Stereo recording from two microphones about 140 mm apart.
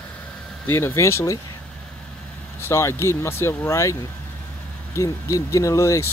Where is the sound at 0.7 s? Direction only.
15° left (ahead or behind).